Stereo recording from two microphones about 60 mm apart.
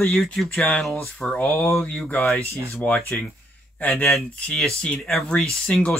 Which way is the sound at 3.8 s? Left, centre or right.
Left.